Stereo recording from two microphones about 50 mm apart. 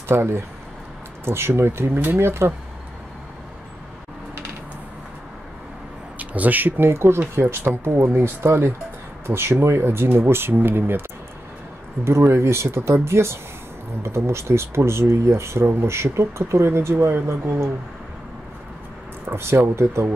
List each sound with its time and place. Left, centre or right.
0.1 s speech: right
6.1 s speech: right
6.9 s speech: right
19.2 s speech: right